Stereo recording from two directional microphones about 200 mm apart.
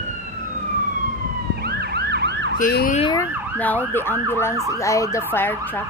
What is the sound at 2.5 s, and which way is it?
Emergency vehicle, 45° left (ahead or behind).